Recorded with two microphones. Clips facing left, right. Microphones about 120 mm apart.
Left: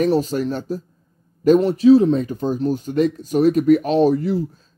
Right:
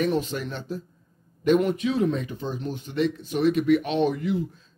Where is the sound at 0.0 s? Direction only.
40° left (ahead or behind).